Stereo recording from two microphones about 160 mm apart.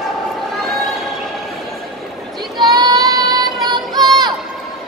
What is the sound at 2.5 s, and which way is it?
Child singing, 25° right (ahead or behind).